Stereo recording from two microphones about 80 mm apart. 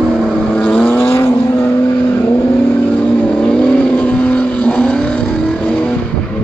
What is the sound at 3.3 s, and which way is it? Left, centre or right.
Vehicle, centre.